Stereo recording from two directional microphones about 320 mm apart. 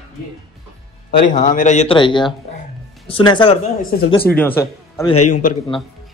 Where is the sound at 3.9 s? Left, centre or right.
Left.